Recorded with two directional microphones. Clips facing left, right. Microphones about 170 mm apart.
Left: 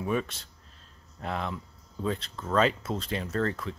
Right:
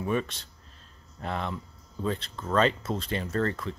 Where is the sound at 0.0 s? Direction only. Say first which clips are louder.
Right 1 dB; 5° left (ahead or behind).